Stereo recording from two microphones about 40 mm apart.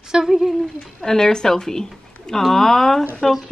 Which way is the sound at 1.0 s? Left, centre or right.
Centre.